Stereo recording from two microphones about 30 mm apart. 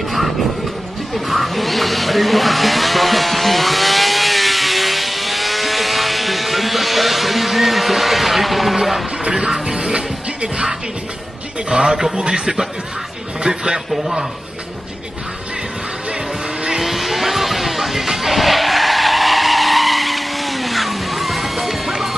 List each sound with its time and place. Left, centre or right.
1.1 s a sound: centre
9.3 s music: right
11.7 s speech: right
13.4 s a man's voice: right
16.8 s music: centre